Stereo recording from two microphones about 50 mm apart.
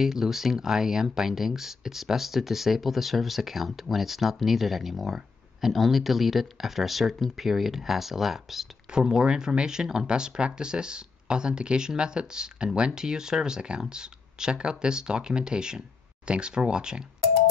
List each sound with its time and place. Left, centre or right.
0.0 s speech: centre